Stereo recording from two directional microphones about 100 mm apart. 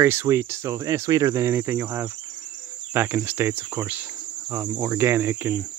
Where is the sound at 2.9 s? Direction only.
25° right (ahead or behind).